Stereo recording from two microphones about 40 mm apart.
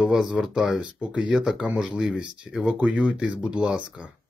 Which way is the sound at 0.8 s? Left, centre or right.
Right.